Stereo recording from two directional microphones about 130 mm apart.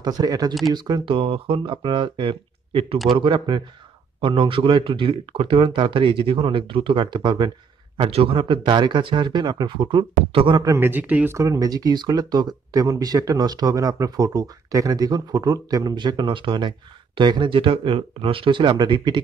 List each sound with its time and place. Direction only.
0.0 s speech: 30° right (ahead or behind)
1.1 s speech: 45° right (ahead or behind)
8.0 s speech: 45° right (ahead or behind)
10.6 s a man's voice: 20° right (ahead or behind)
11.3 s speech: 25° right (ahead or behind)